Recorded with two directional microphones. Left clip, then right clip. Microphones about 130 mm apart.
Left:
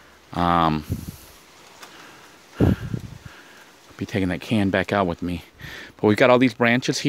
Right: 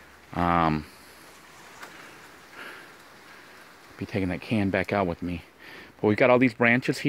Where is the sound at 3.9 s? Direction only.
75° left (ahead or behind).